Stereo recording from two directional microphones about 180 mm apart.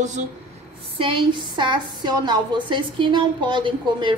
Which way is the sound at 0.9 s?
30° right (ahead or behind).